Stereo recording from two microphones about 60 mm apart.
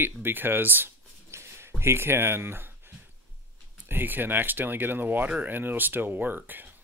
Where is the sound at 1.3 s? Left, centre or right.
Right.